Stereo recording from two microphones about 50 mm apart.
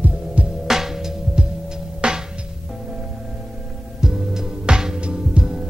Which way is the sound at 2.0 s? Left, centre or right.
Right.